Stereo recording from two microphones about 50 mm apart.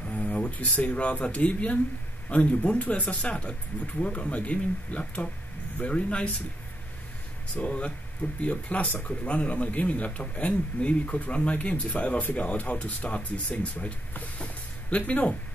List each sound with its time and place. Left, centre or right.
0.0 s a sound: left
0.5 s speech: left
7.6 s speech: left